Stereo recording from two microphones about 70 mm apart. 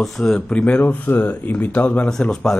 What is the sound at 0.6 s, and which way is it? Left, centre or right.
Speech, left.